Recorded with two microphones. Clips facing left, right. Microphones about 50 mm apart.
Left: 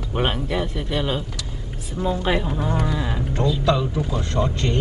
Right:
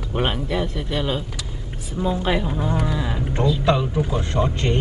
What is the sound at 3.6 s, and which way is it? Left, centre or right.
Speech, centre.